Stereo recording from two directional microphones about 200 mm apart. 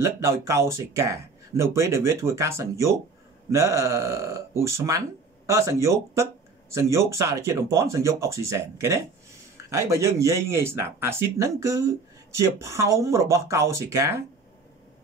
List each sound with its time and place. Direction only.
0.0 s speech: 15° right (ahead or behind)